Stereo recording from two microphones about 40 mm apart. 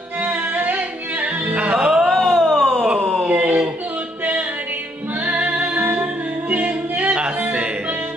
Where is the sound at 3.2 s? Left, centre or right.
Right.